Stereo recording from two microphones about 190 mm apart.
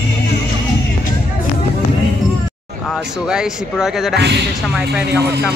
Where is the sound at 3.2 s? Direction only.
5° right (ahead or behind).